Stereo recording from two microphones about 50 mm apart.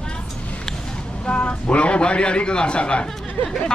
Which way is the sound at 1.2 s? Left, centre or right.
Left.